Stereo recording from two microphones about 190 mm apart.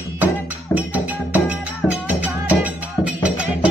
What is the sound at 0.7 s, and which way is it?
Music, 10° right (ahead or behind).